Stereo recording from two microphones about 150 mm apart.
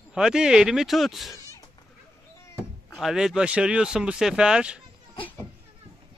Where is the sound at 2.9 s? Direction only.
5° right (ahead or behind).